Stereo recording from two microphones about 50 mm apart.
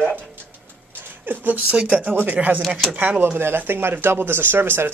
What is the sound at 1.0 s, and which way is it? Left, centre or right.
Speech, right.